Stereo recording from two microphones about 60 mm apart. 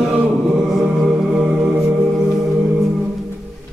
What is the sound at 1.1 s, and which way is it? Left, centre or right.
Music, centre.